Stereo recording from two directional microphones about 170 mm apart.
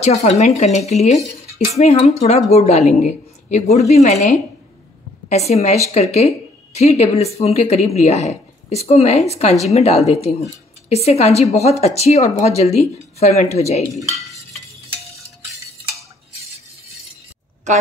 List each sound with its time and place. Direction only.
0.0 s a woman's voice: 40° left (ahead or behind)
17.7 s a woman's voice: 45° right (ahead or behind)